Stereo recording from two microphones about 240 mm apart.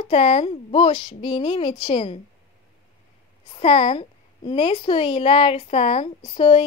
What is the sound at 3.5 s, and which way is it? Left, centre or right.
A woman's voice, left.